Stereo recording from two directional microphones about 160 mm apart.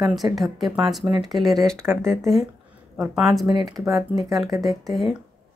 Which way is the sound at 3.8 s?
20° right (ahead or behind).